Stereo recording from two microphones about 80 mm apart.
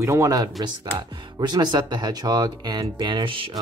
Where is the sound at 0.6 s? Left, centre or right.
Right.